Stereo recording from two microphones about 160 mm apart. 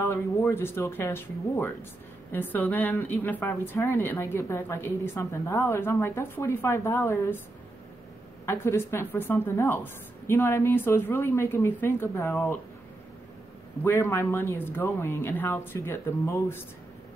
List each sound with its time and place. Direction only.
0.0 s a woman's voice: 15° left (ahead or behind)
8.5 s a woman's voice: 15° left (ahead or behind)
13.8 s a woman's voice: 15° left (ahead or behind)